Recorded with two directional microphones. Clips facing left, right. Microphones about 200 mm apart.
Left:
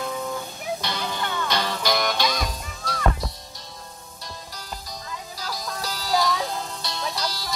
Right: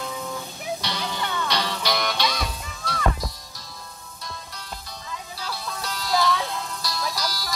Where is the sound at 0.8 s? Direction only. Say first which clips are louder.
Left 1 dB; 50° left (ahead or behind).